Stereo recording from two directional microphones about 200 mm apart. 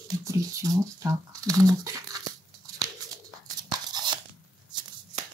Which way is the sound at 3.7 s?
20° right (ahead or behind).